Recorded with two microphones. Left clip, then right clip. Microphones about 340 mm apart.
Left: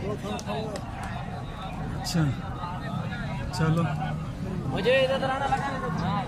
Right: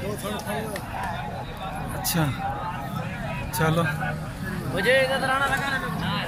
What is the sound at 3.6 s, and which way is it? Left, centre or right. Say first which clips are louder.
Speech: right 5 dB; centre.